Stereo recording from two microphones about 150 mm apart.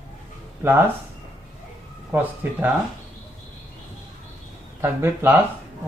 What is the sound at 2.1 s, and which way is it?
Speech, 10° right (ahead or behind).